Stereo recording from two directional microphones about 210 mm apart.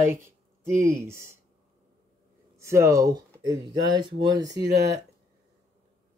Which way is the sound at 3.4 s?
20° right (ahead or behind).